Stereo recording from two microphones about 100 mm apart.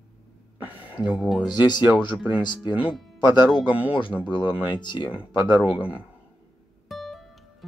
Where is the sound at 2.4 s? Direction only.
45° left (ahead or behind).